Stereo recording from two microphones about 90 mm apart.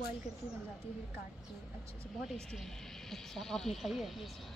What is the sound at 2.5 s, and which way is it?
Speech, 5° left (ahead or behind).